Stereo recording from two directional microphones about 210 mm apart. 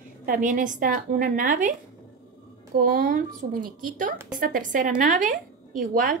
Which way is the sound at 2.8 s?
40° right (ahead or behind).